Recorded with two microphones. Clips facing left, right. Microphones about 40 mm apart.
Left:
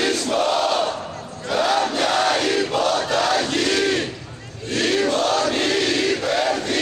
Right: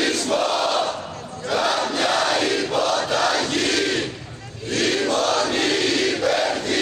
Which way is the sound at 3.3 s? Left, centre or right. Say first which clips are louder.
Left 1 dB; left.